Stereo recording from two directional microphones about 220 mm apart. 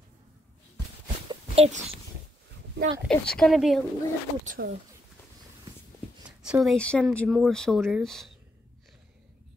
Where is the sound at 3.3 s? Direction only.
Centre (ahead or behind).